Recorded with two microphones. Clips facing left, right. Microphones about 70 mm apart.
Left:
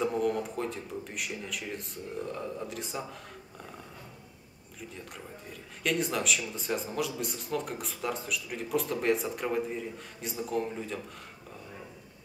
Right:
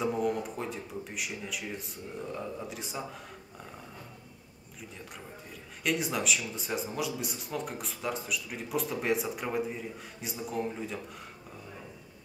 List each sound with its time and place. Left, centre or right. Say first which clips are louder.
0.0 s speech: left 1 dB; centre
5.9 s speech: left 1 dB; centre